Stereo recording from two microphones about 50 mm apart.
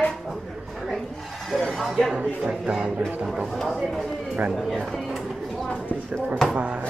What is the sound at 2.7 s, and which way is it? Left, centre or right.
Speech, centre.